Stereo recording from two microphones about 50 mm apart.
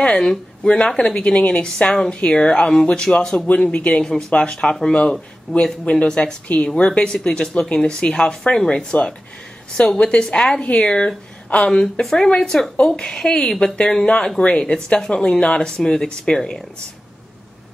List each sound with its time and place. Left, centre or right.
0.0 s a woman's voice: centre
4.0 s speech: centre
4.3 s a woman's voice: left
5.9 s a woman's voice: centre